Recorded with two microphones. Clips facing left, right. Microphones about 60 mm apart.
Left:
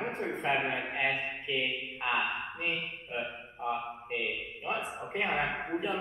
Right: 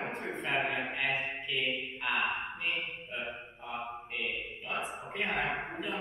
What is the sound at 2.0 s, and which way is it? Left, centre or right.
Speech, left.